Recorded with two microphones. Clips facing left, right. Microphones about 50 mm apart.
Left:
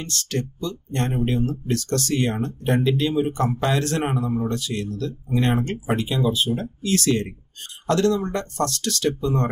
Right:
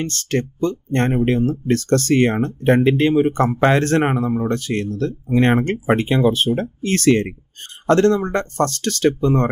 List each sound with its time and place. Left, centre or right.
0.0 s speech: right